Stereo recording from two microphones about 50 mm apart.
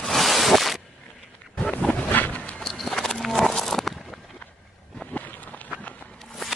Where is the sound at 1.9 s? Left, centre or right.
Left.